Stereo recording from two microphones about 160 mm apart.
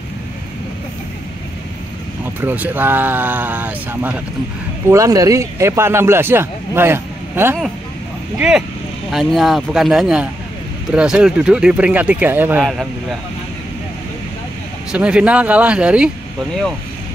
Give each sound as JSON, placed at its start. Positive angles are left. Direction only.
{"t": 2.4, "sound": "speech", "side_deg": -10}
{"t": 8.4, "sound": "speech", "side_deg": -5}
{"t": 14.9, "sound": "speech", "side_deg": -5}